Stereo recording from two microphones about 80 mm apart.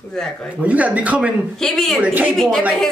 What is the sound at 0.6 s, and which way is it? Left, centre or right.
Speech, centre.